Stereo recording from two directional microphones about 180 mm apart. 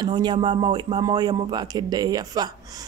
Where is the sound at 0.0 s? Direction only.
25° right (ahead or behind).